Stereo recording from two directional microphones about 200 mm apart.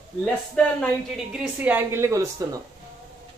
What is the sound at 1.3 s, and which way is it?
Speech, 5° right (ahead or behind).